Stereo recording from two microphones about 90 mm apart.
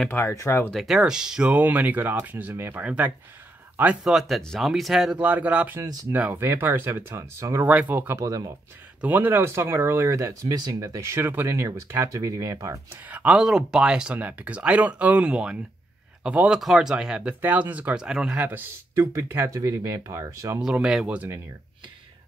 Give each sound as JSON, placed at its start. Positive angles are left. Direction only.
{"t": 0.3, "sound": "speech", "side_deg": 35}
{"t": 0.7, "sound": "speech", "side_deg": -5}
{"t": 4.0, "sound": "speech", "side_deg": -5}
{"t": 5.2, "sound": "speech", "side_deg": -15}
{"t": 7.9, "sound": "speech", "side_deg": -20}
{"t": 8.2, "sound": "speech", "side_deg": -35}
{"t": 9.0, "sound": "speech", "side_deg": -20}
{"t": 12.9, "sound": "speech", "side_deg": -15}
{"t": 18.4, "sound": "speech", "side_deg": -20}
{"t": 18.9, "sound": "speech", "side_deg": -35}
{"t": 20.2, "sound": "speech", "side_deg": -25}
{"t": 20.6, "sound": "speech", "side_deg": -5}